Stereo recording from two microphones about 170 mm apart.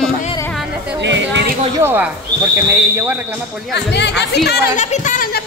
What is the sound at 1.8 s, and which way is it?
Speech, 10° right (ahead or behind).